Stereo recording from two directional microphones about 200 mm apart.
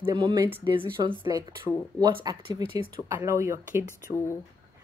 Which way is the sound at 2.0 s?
20° right (ahead or behind).